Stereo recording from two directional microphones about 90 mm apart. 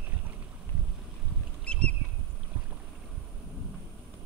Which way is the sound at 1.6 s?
10° left (ahead or behind).